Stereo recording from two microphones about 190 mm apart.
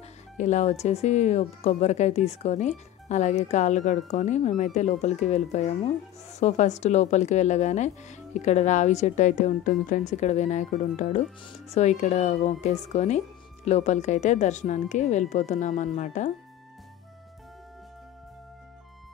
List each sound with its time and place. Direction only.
0.4 s speech: 40° left (ahead or behind)